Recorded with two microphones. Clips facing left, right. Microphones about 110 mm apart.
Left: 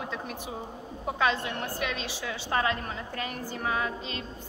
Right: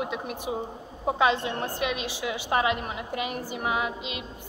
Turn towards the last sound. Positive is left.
turn(degrees=-15)  # may be behind; listen again after turning